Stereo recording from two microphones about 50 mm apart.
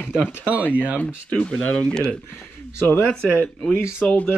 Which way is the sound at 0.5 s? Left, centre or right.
Right.